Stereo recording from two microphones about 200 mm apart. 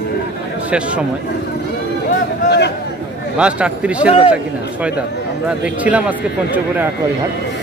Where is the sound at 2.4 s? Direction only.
55° left (ahead or behind).